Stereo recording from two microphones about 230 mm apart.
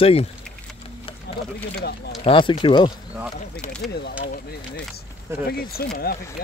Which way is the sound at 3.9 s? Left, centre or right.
Left.